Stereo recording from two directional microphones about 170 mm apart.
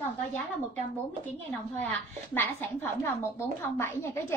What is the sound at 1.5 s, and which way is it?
A woman's voice, 10° left (ahead or behind).